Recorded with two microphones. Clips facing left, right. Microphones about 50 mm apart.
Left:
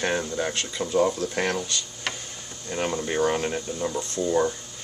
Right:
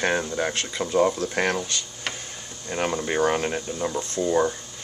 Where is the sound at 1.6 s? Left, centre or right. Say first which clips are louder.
Right 1 dB; right.